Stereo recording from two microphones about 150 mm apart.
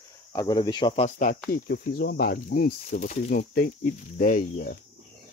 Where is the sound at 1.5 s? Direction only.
90° left; by 4.7 s 65° left (ahead or behind).